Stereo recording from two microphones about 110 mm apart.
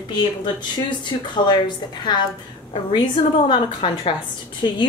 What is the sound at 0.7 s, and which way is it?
Speech, 45° left (ahead or behind).